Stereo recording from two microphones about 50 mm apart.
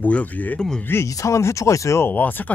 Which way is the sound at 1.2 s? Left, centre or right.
Left.